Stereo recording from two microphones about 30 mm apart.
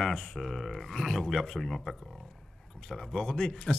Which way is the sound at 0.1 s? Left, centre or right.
Left.